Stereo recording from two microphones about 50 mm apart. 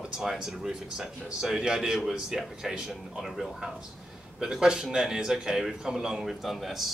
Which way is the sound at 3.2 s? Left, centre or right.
Centre.